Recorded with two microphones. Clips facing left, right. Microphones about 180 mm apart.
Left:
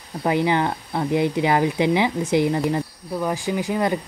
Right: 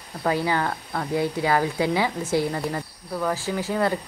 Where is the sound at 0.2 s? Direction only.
20° left (ahead or behind).